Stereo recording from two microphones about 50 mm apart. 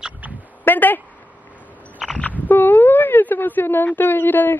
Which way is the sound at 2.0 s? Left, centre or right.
Centre.